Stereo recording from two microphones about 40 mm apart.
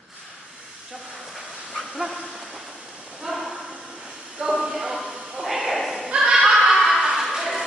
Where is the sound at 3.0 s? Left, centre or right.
Right.